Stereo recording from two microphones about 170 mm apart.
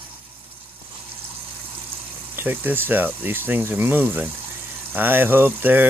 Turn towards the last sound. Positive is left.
turn(degrees=-10)  # may be behind; listen again after turning